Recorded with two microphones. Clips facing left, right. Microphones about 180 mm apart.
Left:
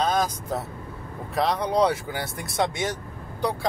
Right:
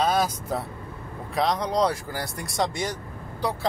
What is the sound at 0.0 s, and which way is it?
Speech, 5° right (ahead or behind).